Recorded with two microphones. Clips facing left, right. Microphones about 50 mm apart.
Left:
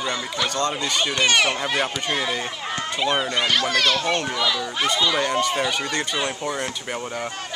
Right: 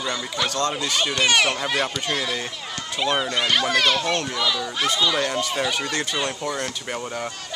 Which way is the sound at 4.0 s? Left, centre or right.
Centre.